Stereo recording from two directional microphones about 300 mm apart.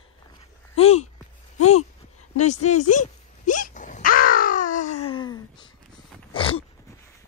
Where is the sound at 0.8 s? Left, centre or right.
Centre.